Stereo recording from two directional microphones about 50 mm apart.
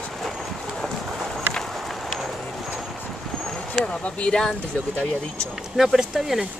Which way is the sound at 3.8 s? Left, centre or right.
Left.